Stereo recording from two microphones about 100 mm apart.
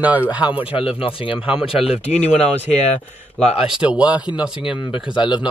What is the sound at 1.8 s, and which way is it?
Speech, 90° left.